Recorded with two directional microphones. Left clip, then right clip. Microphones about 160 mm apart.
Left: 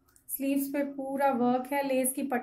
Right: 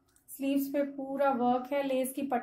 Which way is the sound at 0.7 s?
20° left (ahead or behind).